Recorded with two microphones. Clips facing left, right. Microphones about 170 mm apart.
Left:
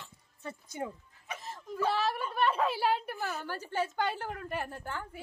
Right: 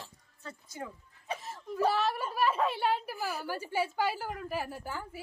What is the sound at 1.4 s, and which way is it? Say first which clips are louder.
A woman's voice: right 2 dB; centre (ahead or behind).